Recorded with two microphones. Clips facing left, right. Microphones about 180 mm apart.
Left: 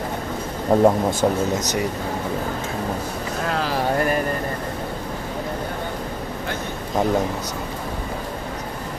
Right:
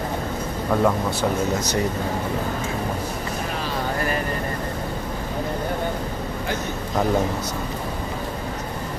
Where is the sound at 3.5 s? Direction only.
90° left.